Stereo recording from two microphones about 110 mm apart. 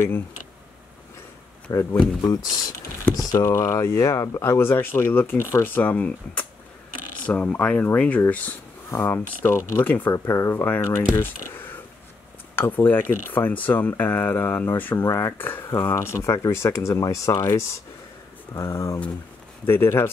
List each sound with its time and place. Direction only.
1.7 s speech: 25° left (ahead or behind)
3.3 s speech: 30° left (ahead or behind)
10.1 s speech: 25° left (ahead or behind)
11.1 s a sound: 20° left (ahead or behind)
12.5 s speech: 15° left (ahead or behind)